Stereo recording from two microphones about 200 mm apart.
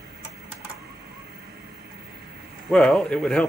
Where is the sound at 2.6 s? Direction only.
Centre (ahead or behind).